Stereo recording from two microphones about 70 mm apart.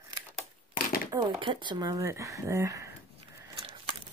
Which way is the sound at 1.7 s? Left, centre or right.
Right.